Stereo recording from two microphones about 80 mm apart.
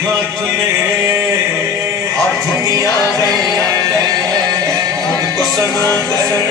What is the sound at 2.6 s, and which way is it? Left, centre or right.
Music, right.